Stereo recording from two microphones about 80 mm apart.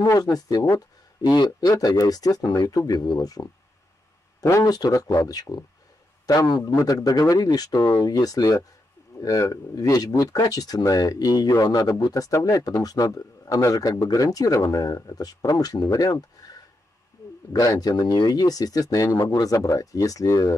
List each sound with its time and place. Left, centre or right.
0.1 s speech: left
1.3 s speech: left
4.5 s speech: left